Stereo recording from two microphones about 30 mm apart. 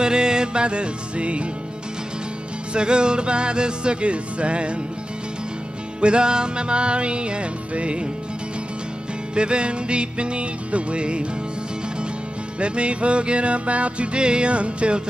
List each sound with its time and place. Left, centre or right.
0.0 s music: right
2.7 s music: right
5.9 s music: right
9.3 s music: right
12.5 s music: right